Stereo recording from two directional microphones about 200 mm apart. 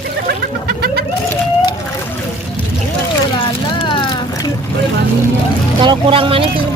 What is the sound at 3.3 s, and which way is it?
Vehicle, 25° left (ahead or behind).